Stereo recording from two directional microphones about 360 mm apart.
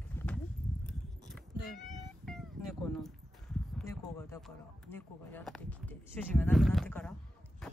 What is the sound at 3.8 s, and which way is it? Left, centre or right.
Speech, centre.